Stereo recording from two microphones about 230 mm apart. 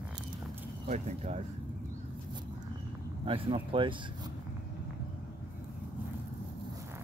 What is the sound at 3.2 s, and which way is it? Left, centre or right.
Speech, right.